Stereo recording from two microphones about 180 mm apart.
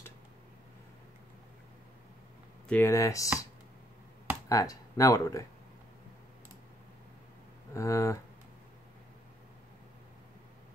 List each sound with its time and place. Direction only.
2.7 s speech: 15° left (ahead or behind)
4.5 s speech: 20° left (ahead or behind)
7.7 s speech: 15° left (ahead or behind)